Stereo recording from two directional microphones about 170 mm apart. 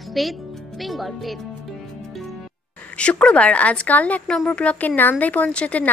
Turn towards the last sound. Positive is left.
turn(degrees=5)  # may be behind; listen again after turning